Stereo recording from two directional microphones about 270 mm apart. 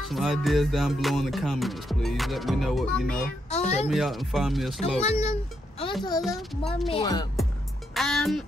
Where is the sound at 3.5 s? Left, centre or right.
Left.